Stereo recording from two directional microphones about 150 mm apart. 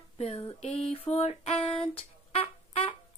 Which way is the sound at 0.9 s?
40° left (ahead or behind).